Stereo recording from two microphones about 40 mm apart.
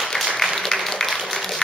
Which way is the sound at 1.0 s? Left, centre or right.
Centre.